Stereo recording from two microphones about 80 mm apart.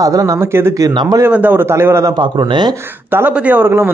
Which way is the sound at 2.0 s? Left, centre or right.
Right.